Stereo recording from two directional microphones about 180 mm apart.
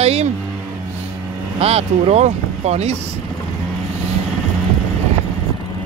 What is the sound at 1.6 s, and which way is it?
Speech, 35° right (ahead or behind).